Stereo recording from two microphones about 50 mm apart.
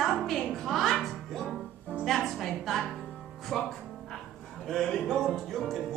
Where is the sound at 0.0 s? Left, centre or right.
Centre.